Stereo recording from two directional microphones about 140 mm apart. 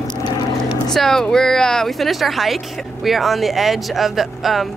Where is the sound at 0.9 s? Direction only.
5° left (ahead or behind).